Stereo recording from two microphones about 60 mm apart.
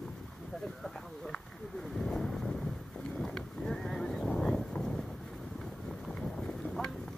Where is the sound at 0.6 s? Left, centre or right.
Centre.